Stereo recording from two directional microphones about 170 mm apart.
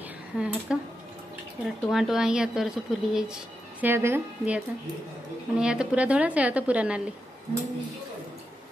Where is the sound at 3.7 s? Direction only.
15° right (ahead or behind).